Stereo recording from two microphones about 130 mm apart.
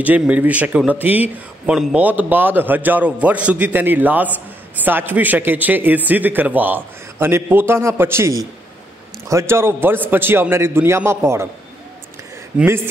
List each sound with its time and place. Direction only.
0.0 s a man's voice: 10° right (ahead or behind)
12.6 s speech: 20° right (ahead or behind)